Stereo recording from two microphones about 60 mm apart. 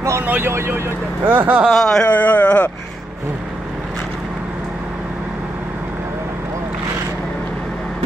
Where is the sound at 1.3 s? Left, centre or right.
Right.